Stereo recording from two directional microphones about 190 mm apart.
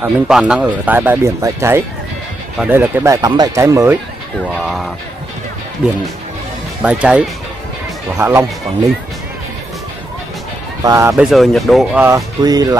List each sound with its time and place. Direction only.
0.0 s speech: 5° right (ahead or behind)
4.6 s speech: centre (ahead or behind)
6.8 s speech: 5° right (ahead or behind)
10.8 s speech: 15° right (ahead or behind)
11.1 s speech: centre (ahead or behind); by 12.7 s 20° right (ahead or behind)